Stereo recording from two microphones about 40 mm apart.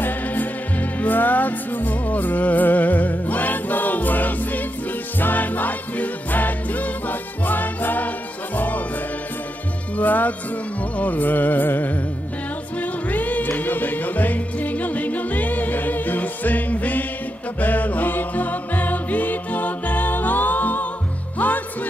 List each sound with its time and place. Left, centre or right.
0.0 s music: left
9.9 s music: left
13.1 s music: left